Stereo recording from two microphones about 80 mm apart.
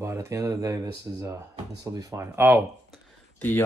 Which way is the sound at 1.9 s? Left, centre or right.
Right.